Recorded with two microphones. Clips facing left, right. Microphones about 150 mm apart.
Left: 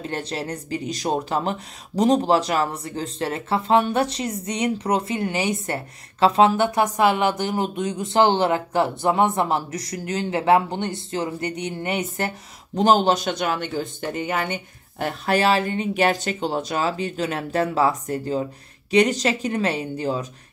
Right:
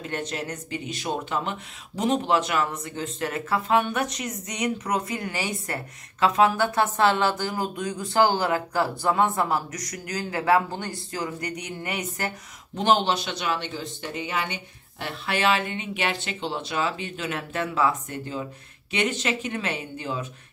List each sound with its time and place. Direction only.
0.0 s speech: 30° left (ahead or behind)
12.7 s speech: 40° left (ahead or behind)